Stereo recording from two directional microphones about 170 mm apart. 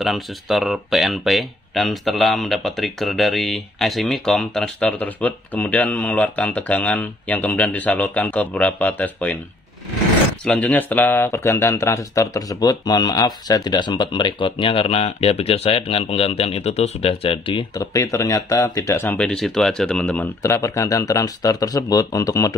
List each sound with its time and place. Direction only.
0.0 s speech: centre (ahead or behind)
10.4 s speech: 10° left (ahead or behind)